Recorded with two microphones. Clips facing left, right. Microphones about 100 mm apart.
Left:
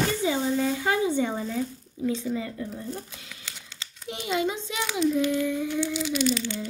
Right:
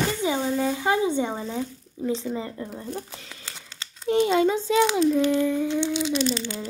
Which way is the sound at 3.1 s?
35° right (ahead or behind).